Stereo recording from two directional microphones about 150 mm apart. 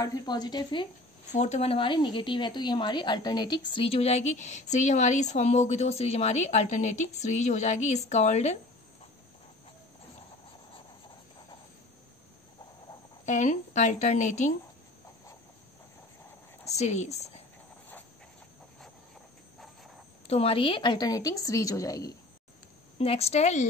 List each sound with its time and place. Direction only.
0.0 s a woman's voice: 25° left (ahead or behind)
1.3 s a woman's voice: 50° left (ahead or behind)
13.2 s a woman's voice: 55° left (ahead or behind)
16.7 s a woman's voice: 50° left (ahead or behind)
20.2 s a woman's voice: 40° left (ahead or behind); by 22.1 s 25° left (ahead or behind)
22.9 s a woman's voice: 40° left (ahead or behind)